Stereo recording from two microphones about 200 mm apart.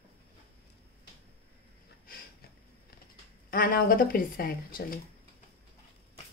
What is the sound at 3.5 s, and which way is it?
A woman's voice, 45° left (ahead or behind).